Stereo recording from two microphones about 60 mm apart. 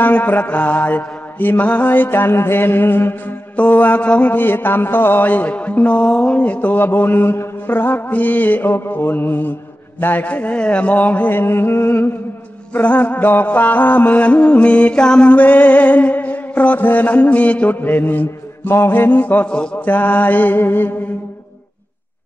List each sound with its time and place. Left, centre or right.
0.0 s mantra: left
3.5 s music: left
6.4 s mantra: left
9.9 s music: left
12.7 s music: left
18.8 s mantra: left
19.5 s mantra: centre
19.9 s mantra: left